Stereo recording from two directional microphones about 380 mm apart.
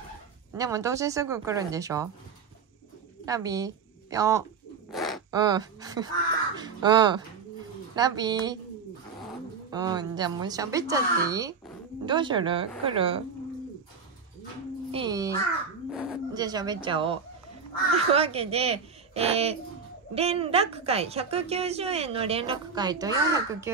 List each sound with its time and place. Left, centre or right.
0.5 s a woman's voice: centre
3.3 s a woman's voice: centre
4.9 s a sound: centre
5.3 s a woman's voice: centre
9.7 s a woman's voice: centre
14.9 s a woman's voice: centre